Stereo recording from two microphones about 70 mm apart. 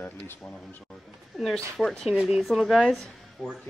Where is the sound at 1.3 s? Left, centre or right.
Centre.